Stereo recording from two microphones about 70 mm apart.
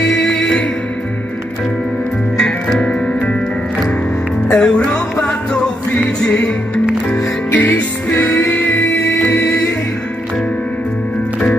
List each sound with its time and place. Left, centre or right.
0.1 s music: centre
2.3 s music: centre
4.5 s music: centre
8.1 s music: left